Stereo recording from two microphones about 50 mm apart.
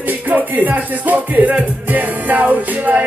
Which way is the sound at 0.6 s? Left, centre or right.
Right.